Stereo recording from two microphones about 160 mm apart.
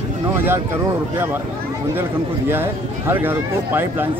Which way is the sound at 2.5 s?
15° right (ahead or behind).